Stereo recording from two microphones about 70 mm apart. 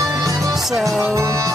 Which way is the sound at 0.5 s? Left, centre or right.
Centre.